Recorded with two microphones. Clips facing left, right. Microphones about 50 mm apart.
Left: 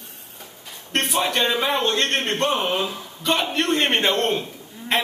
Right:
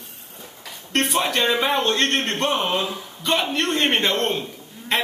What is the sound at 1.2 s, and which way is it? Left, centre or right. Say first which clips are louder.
Speech: left 2 dB; centre.